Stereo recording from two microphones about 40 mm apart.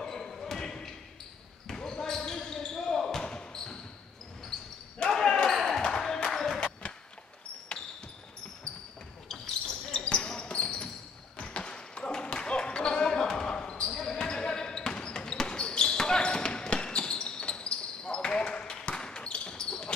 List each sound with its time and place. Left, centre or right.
0.0 s basketball bounce: centre
5.1 s basketball bounce: centre
5.8 s a sound: centre
9.3 s basketball bounce: centre
10.1 s basketball bounce: left